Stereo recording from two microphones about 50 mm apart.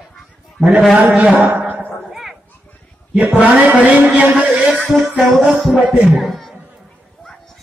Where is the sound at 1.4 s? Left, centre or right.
Right.